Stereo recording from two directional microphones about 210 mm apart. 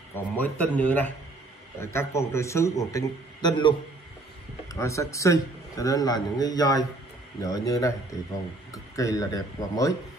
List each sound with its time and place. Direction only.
0.1 s a man's voice: 10° left (ahead or behind)
4.7 s a man's voice: 15° left (ahead or behind)